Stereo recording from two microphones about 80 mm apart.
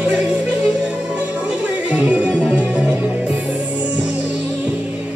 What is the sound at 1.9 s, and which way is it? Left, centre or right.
Music, centre.